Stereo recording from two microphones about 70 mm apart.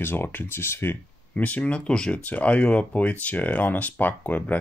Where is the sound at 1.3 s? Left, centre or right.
Centre.